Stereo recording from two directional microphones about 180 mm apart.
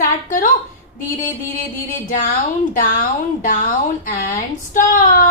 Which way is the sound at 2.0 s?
50° left (ahead or behind).